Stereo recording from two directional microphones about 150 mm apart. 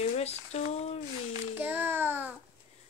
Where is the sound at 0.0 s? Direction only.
45° left (ahead or behind).